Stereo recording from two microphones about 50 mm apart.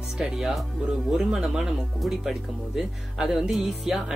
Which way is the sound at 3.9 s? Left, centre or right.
Centre.